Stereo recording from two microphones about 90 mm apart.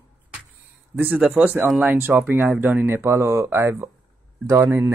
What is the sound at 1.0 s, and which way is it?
Speech, 15° right (ahead or behind).